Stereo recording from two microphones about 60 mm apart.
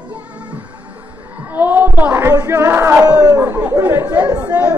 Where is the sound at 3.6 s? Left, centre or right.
Right.